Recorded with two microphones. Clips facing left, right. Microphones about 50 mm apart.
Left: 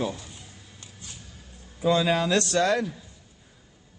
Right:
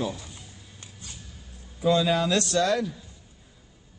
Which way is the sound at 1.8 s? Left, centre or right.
Left.